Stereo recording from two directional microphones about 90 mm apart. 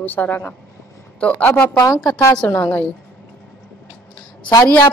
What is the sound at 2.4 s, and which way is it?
Speech, 20° left (ahead or behind).